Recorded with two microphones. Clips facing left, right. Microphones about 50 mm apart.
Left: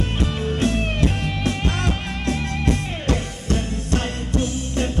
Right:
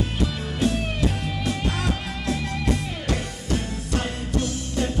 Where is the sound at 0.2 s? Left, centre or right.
Left.